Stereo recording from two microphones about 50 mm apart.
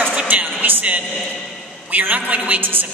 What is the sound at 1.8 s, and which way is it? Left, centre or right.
Speech, right.